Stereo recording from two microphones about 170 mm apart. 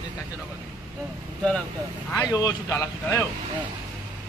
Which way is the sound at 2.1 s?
20° left (ahead or behind).